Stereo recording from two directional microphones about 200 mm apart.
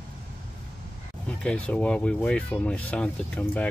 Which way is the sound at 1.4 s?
5° left (ahead or behind).